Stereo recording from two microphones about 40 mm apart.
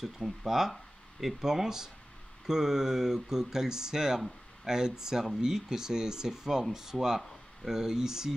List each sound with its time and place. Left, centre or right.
0.0 s speech: centre